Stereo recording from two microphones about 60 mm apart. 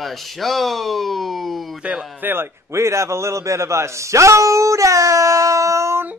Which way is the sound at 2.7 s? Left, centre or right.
Right.